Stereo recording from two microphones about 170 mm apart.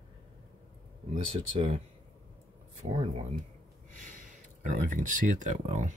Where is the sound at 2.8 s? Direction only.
40° right (ahead or behind).